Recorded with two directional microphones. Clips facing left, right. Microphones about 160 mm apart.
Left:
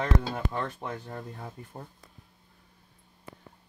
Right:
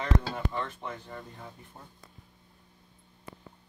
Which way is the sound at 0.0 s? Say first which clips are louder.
Left 1 dB; 45° left (ahead or behind).